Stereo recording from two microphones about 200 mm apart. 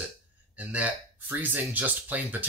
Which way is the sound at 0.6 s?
5° right (ahead or behind).